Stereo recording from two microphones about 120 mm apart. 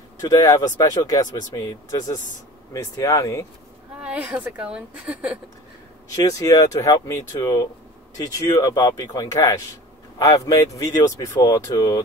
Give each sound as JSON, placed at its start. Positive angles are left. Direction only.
{"t": 0.2, "sound": "speech", "side_deg": 30}
{"t": 4.0, "sound": "a woman's voice", "side_deg": -10}
{"t": 6.1, "sound": "speech", "side_deg": 30}